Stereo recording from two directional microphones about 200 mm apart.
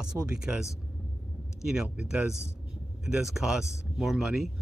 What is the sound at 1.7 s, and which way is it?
Speech, 5° right (ahead or behind).